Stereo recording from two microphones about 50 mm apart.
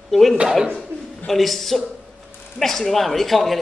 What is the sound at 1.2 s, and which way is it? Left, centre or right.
A man's voice, centre.